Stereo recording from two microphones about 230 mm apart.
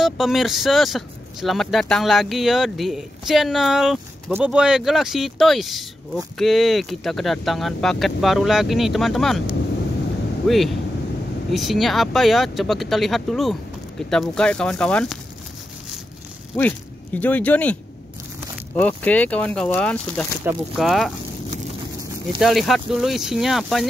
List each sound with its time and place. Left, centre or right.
0.0 s speech: centre
16.5 s speech: centre
18.8 s speech: centre
22.4 s speech: centre